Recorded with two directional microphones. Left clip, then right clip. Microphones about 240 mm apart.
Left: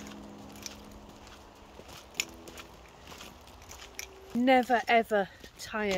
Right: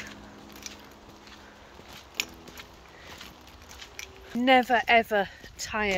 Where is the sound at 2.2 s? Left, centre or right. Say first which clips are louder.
Right 3 dB; centre.